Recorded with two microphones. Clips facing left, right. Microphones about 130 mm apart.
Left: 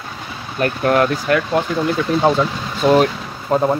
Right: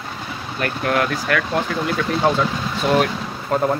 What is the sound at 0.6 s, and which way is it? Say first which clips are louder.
Speech: left 5 dB; 35° left (ahead or behind).